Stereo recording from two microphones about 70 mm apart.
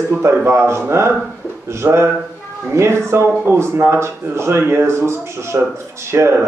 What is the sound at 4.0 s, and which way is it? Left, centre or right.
Speech, right.